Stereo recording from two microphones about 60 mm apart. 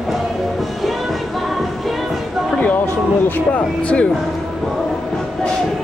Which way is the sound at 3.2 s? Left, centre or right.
Left.